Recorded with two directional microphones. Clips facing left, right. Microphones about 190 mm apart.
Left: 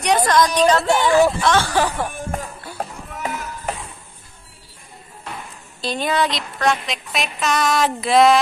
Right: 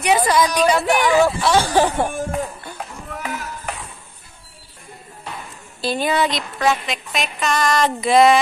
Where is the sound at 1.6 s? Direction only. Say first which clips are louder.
Right 3 dB; 15° right (ahead or behind).